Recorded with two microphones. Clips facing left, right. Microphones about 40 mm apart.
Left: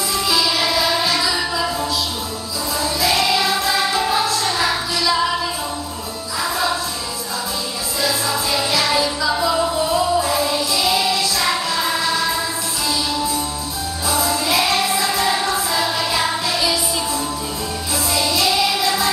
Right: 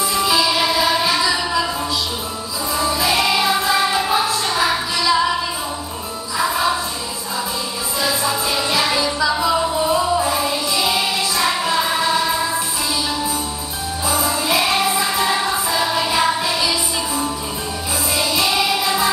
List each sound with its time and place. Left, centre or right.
0.1 s music: right
2.8 s music: right
6.3 s music: centre
8.9 s music: centre; by 12.2 s right
14.0 s music: right